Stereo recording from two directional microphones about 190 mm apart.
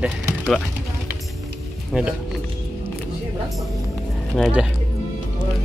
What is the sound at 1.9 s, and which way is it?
Speech, 5° right (ahead or behind).